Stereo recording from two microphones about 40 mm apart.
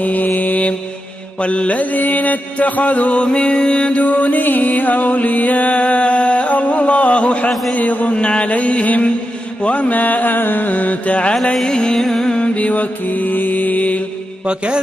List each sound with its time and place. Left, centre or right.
0.0 s mantra: left
1.4 s mantra: left
4.0 s music: left
7.7 s mantra: left
11.6 s music: left
12.5 s music: left
14.4 s mantra: right